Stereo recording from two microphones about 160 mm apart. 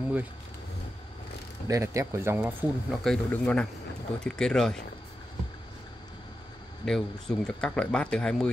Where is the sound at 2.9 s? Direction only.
5° left (ahead or behind).